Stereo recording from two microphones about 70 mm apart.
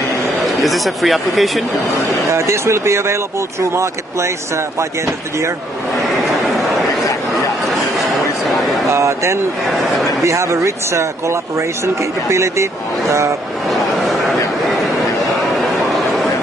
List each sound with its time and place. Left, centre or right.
0.4 s speech: centre
2.2 s speech: right
8.9 s speech: right
13.7 s a sound: centre